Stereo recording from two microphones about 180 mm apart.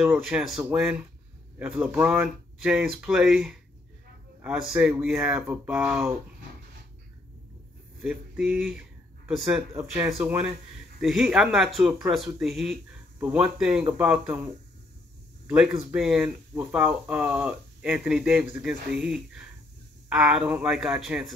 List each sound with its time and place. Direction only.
0.0 s speech: 5° right (ahead or behind)
8.0 s speech: 5° right (ahead or behind)
9.8 s speech: 15° right (ahead or behind)
10.1 s speech: 5° right (ahead or behind)